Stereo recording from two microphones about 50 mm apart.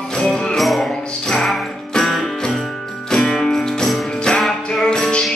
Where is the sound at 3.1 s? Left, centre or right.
Centre.